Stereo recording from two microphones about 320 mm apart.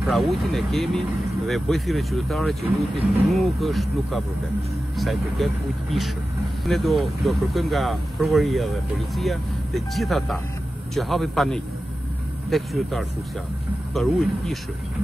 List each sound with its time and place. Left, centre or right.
0.0 s speech: centre